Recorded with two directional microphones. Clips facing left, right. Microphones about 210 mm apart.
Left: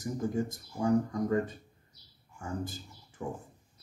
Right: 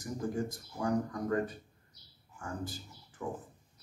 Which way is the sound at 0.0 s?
25° left (ahead or behind).